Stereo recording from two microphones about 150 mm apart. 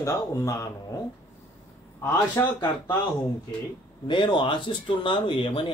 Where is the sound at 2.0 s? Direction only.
15° left (ahead or behind).